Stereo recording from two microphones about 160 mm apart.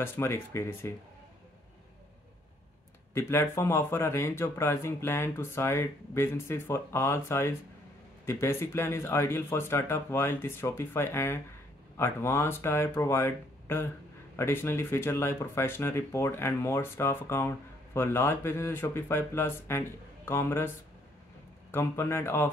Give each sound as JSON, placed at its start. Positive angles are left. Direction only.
{"t": 0.0, "sound": "speech", "side_deg": 15}
{"t": 3.2, "sound": "speech", "side_deg": 15}
{"t": 21.7, "sound": "speech", "side_deg": 15}